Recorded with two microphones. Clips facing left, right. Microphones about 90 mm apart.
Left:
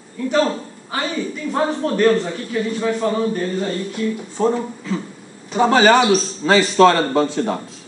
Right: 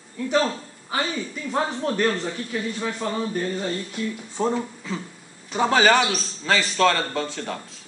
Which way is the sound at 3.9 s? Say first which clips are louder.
Left 6 dB; 10° right (ahead or behind).